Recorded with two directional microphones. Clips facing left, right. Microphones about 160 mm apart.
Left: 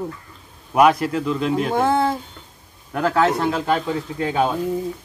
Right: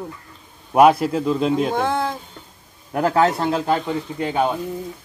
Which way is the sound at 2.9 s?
30° right (ahead or behind).